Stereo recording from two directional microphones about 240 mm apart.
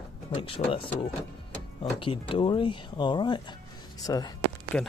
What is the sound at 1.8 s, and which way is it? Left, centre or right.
Speech, left.